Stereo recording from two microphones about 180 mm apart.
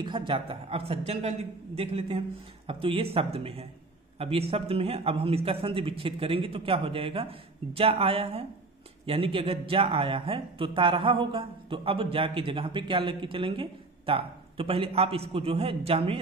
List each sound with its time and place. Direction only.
0.0 s speech: 25° right (ahead or behind)